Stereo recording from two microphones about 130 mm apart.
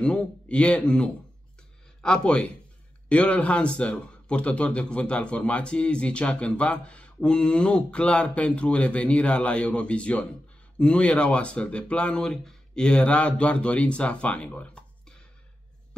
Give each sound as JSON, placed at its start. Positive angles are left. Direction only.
{"t": 0.0, "sound": "a man's voice", "side_deg": 10}